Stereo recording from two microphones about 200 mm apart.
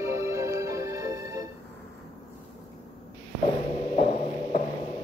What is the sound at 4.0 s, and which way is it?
Hum, 35° left (ahead or behind).